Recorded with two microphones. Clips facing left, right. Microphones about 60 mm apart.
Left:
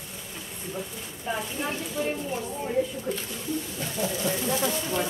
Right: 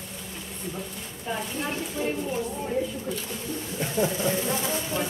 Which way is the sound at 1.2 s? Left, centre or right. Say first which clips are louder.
Even; centre.